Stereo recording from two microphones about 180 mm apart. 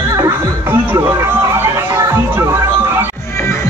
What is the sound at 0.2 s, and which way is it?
Music, 15° right (ahead or behind).